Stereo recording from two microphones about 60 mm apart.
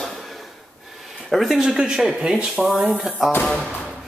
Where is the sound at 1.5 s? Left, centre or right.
Centre.